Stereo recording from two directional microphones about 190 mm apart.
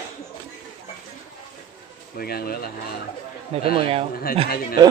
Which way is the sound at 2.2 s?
55° left (ahead or behind).